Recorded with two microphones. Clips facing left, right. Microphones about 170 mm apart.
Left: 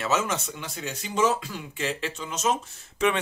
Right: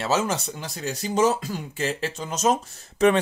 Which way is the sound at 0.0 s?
35° right (ahead or behind).